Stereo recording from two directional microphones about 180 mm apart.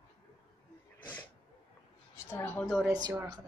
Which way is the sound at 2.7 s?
5° right (ahead or behind).